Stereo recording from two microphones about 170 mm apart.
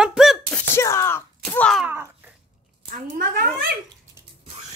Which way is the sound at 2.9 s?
60° right (ahead or behind).